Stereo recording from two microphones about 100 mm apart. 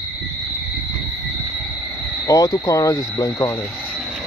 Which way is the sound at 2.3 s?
35° left (ahead or behind).